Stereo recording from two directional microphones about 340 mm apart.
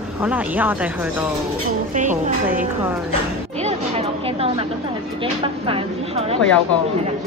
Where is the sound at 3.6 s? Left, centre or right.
Centre.